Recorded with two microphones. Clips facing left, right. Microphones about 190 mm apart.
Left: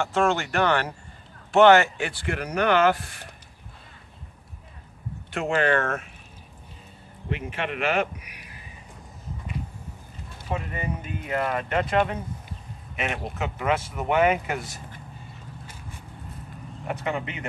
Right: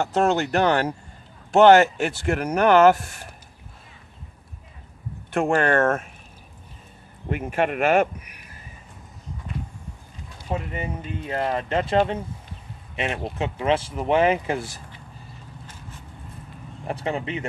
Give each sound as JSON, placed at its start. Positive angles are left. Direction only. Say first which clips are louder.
{"t": 0.0, "sound": "speech", "louder": "right 3 dB", "side_deg": -40}
{"t": 5.3, "sound": "speech", "louder": "right 3 dB", "side_deg": -50}
{"t": 7.2, "sound": "speech", "louder": "right 6 dB", "side_deg": -45}
{"t": 11.1, "sound": "speech", "louder": "right 2 dB", "side_deg": -30}
{"t": 16.8, "sound": "speech", "louder": "right 2 dB", "side_deg": -30}